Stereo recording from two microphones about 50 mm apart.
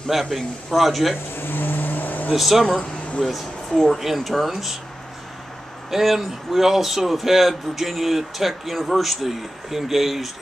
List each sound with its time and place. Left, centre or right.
0.1 s a man's voice: centre
1.3 s vehicle: left
2.3 s a man's voice: centre
5.9 s a man's voice: centre